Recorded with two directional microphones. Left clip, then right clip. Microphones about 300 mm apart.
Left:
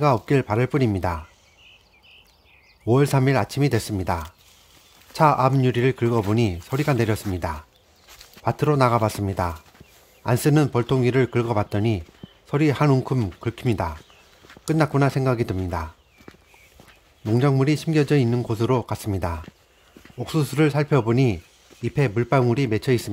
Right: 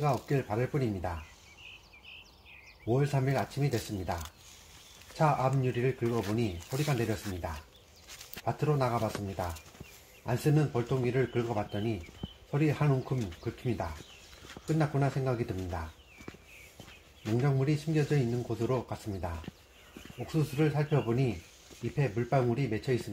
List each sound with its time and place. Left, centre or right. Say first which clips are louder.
0.0 s speech: left 11 dB; left
2.9 s speech: left 11 dB; left
5.1 s speech: left 11 dB; left
8.5 s speech: left 11 dB; left
10.2 s speech: left 10 dB; left
17.4 s speech: left 11 dB; left